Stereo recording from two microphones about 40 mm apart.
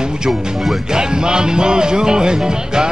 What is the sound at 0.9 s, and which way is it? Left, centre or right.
Music, centre.